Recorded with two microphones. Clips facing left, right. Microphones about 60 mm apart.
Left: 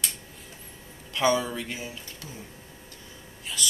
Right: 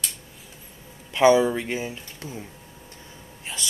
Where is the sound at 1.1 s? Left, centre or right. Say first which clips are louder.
Right 7 dB; right.